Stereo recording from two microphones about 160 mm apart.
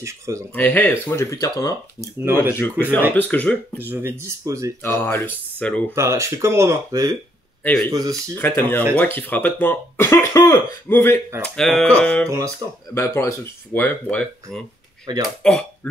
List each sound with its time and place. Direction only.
0.0 s speech: 20° right (ahead or behind)
0.6 s speech: 10° left (ahead or behind)
3.1 s speech: 10° left (ahead or behind)
3.8 s speech: 15° right (ahead or behind)
4.8 s speech: 15° left (ahead or behind)
5.9 s speech: 20° right (ahead or behind)
7.6 s speech: 5° left (ahead or behind)
7.9 s speech: 20° right (ahead or behind)
8.4 s speech: 10° left (ahead or behind)
12.3 s speech: 20° right (ahead or behind)
12.9 s speech: 15° left (ahead or behind)
15.1 s speech: 25° right (ahead or behind)
15.4 s speech: 5° left (ahead or behind)